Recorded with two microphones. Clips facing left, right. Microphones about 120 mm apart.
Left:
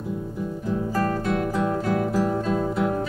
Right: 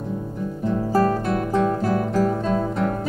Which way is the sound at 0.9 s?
35° right (ahead or behind).